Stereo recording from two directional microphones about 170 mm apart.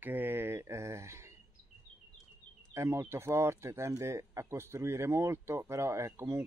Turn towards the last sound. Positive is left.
turn(degrees=-15)  # may be behind; listen again after turning